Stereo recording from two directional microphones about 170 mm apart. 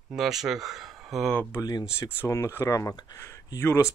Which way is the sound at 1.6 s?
20° left (ahead or behind).